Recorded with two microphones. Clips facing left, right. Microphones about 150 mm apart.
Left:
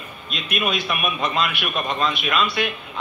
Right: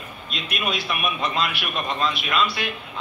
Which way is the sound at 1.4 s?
25° right (ahead or behind).